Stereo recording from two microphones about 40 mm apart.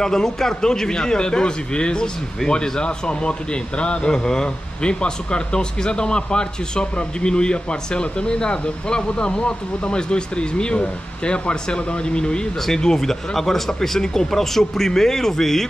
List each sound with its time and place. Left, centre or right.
0.0 s speech: centre
12.6 s speech: centre